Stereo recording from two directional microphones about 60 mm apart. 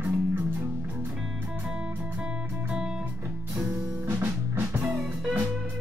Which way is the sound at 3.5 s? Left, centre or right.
Right.